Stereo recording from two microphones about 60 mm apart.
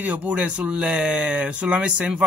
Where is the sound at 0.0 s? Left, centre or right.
Right.